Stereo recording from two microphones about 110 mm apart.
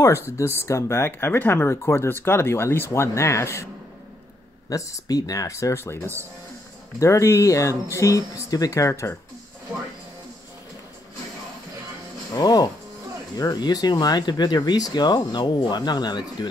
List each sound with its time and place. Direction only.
0.4 s speech: 25° left (ahead or behind)
4.6 s speech: 30° left (ahead or behind)
12.4 s speech: 35° left (ahead or behind)